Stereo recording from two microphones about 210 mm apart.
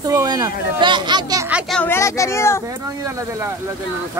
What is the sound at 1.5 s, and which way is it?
Speech, 5° left (ahead or behind).